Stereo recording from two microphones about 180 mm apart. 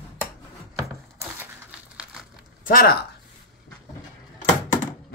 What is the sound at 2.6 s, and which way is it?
Speech, 55° left (ahead or behind).